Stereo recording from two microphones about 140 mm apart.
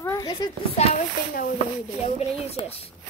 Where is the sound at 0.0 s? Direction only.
20° left (ahead or behind).